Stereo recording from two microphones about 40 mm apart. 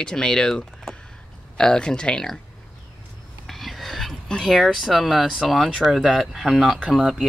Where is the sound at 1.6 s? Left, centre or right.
Centre.